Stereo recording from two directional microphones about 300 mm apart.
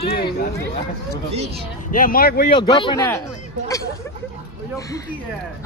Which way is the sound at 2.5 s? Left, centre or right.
Centre.